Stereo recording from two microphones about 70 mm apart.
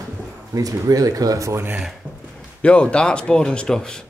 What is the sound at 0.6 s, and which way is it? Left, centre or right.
Speech, right.